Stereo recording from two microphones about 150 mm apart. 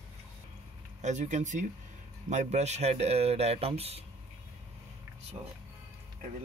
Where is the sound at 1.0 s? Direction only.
55° right (ahead or behind).